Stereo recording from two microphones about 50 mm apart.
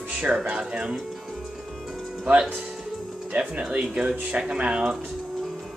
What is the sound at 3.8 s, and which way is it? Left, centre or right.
Speech, centre.